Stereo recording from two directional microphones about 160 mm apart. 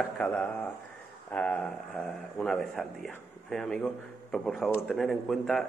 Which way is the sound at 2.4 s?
Centre (ahead or behind).